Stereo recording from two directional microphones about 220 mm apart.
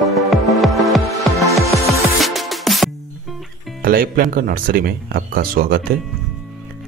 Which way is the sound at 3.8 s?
40° right (ahead or behind).